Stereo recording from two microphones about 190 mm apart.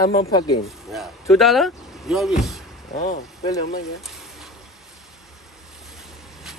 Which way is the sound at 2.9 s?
35° left (ahead or behind).